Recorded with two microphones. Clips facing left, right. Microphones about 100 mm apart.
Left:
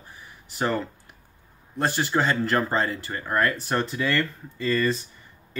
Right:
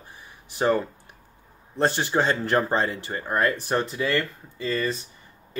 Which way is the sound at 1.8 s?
25° right (ahead or behind).